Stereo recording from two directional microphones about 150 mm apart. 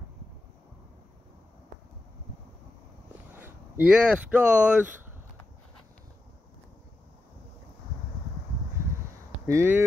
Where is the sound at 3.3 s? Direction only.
10° right (ahead or behind).